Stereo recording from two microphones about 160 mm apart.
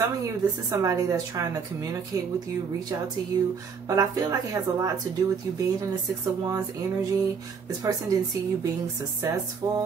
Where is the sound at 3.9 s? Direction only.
20° right (ahead or behind).